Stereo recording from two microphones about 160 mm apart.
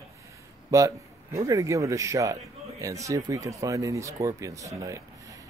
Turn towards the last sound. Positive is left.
turn(degrees=-20)  # may be behind; listen again after turning